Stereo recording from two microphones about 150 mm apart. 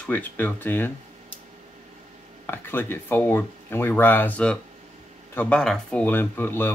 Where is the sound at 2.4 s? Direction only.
15° left (ahead or behind).